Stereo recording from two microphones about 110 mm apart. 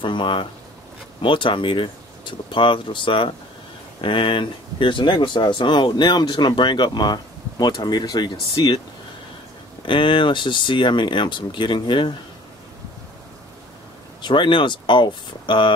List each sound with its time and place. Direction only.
0.0 s speech: 50° left (ahead or behind)
9.8 s speech: 50° left (ahead or behind)
14.2 s speech: 45° left (ahead or behind)